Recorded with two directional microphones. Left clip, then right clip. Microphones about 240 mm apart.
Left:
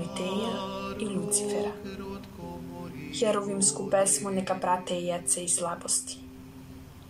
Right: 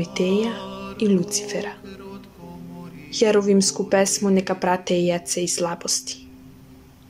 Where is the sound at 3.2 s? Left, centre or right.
Right.